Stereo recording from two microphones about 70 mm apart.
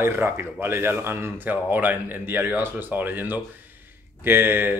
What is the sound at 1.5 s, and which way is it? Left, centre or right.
Speech, right.